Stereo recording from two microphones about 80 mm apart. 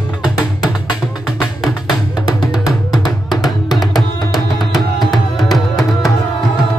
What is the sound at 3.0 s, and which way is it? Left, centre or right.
Music, left.